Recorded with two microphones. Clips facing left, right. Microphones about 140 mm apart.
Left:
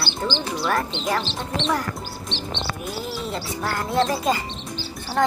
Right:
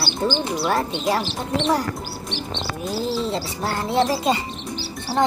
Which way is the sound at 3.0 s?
30° right (ahead or behind).